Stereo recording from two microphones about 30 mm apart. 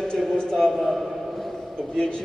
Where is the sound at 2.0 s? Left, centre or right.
Left.